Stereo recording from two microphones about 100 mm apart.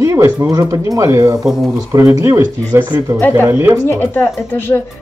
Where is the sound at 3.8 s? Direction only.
25° left (ahead or behind).